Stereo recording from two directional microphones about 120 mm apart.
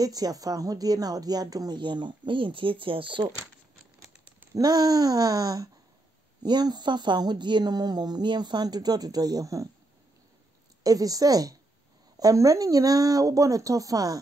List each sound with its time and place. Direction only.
0.0 s speech: 30° right (ahead or behind)
4.6 s speech: 35° right (ahead or behind)
10.8 s speech: 30° right (ahead or behind)